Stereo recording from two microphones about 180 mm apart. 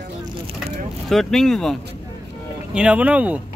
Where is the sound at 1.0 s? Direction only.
Centre (ahead or behind).